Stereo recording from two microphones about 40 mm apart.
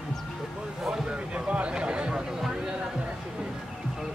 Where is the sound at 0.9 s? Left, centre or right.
Right.